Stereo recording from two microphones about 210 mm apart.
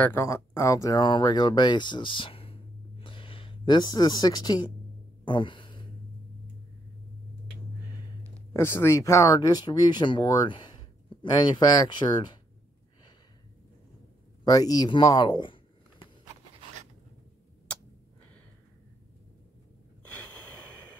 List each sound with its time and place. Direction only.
0.0 s speech: 10° left (ahead or behind)
5.2 s a sound: 25° left (ahead or behind)
8.5 s speech: 10° left (ahead or behind)
14.4 s speech: 15° left (ahead or behind)